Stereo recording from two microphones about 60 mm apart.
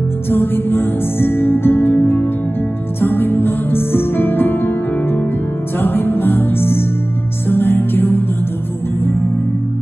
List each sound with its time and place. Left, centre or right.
0.3 s music: left